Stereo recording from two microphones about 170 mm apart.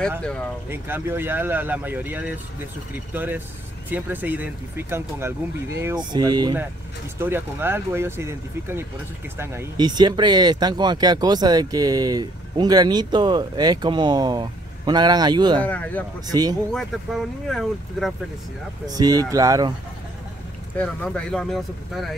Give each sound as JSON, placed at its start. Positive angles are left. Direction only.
{"t": 0.2, "sound": "speech", "side_deg": 5}
{"t": 0.7, "sound": "speech", "side_deg": -15}
{"t": 7.2, "sound": "speech", "side_deg": -15}
{"t": 15.6, "sound": "speech", "side_deg": 10}
{"t": 16.3, "sound": "speech", "side_deg": -25}
{"t": 16.7, "sound": "speech", "side_deg": 0}
{"t": 18.9, "sound": "speech", "side_deg": -20}
{"t": 20.7, "sound": "speech", "side_deg": 10}